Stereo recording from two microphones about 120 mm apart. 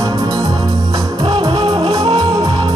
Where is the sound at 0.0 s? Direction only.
30° right (ahead or behind).